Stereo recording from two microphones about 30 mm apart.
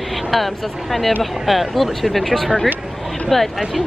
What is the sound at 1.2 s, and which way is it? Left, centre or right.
Speech, centre.